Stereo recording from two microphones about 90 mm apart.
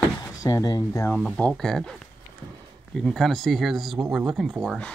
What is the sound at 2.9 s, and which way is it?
Speech, centre (ahead or behind).